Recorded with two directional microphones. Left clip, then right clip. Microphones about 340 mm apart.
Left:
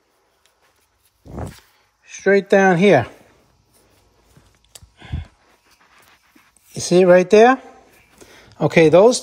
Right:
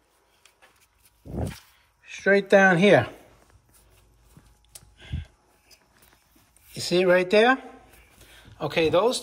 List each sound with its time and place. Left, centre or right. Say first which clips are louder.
2.0 s speech: left 5 dB; centre
6.7 s speech: left 8 dB; centre
8.5 s speech: left 10 dB; left